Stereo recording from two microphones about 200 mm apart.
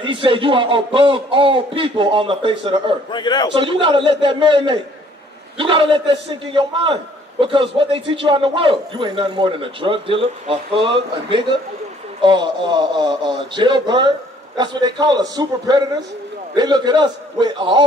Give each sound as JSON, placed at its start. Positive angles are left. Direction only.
{"t": 0.0, "sound": "a man's voice", "side_deg": -25}
{"t": 3.1, "sound": "a man's voice", "side_deg": 20}
{"t": 3.5, "sound": "a man's voice", "side_deg": -25}